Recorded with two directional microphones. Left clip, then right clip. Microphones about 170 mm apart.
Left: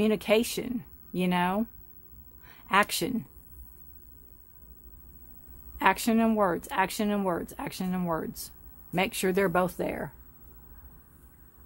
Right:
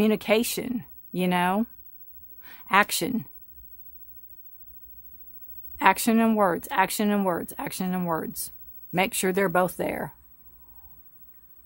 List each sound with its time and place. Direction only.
0.0 s speech: 35° right (ahead or behind)
5.8 s speech: 35° right (ahead or behind)